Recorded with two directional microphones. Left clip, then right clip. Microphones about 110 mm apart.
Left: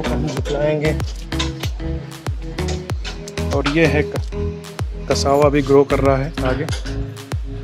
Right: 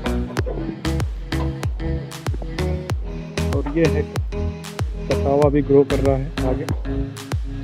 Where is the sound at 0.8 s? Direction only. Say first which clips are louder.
Left 6 dB; centre (ahead or behind).